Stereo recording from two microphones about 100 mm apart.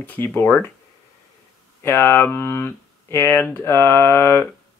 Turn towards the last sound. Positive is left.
turn(degrees=25)  # may be behind; listen again after turning